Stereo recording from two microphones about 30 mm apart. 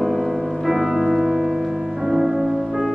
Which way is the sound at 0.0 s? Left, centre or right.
Centre.